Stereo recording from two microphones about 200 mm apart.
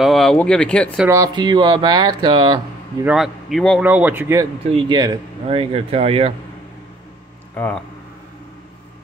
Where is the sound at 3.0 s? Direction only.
Centre (ahead or behind).